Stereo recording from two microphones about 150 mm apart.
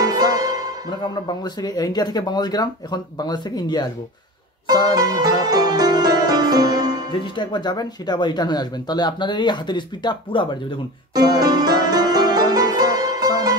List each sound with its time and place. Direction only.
0.0 s music: 25° right (ahead or behind)
0.8 s speech: 30° left (ahead or behind)
4.9 s music: 25° right (ahead or behind)
7.3 s speech: 30° left (ahead or behind)
11.1 s music: 25° right (ahead or behind)